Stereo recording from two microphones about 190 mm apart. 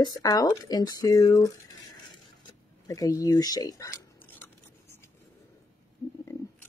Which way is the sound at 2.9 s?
20° left (ahead or behind).